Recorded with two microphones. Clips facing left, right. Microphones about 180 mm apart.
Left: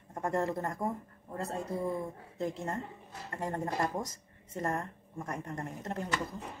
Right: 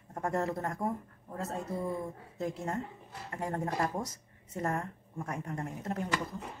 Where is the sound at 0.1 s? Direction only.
5° right (ahead or behind).